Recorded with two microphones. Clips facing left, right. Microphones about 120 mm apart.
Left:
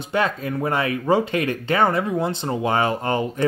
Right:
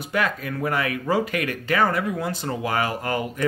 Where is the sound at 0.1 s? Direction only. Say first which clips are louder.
Left 3 dB; 25° left (ahead or behind).